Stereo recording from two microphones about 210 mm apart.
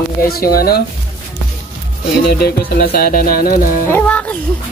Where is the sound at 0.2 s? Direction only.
45° left (ahead or behind).